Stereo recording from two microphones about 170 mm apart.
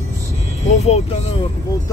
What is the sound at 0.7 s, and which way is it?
Speech, 40° left (ahead or behind).